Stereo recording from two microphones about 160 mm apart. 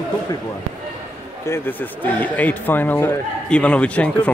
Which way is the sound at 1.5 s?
10° left (ahead or behind).